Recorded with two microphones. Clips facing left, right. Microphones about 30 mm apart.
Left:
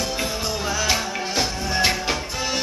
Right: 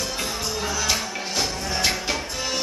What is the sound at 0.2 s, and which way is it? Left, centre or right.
Music, centre.